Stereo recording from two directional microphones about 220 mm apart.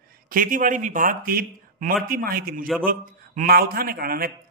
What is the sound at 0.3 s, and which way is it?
A man's voice, 40° right (ahead or behind).